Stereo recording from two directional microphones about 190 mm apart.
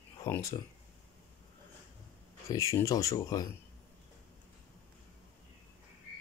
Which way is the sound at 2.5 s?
20° left (ahead or behind).